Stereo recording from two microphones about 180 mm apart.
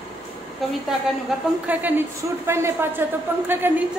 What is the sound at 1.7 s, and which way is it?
A woman's voice, 10° right (ahead or behind).